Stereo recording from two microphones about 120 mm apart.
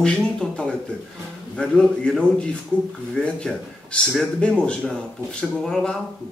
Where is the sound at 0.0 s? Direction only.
5° left (ahead or behind).